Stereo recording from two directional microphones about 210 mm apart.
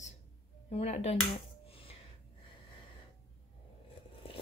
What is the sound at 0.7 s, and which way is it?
Speech, 30° left (ahead or behind).